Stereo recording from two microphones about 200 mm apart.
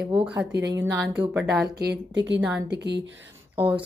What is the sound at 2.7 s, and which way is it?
Speech, 60° right (ahead or behind).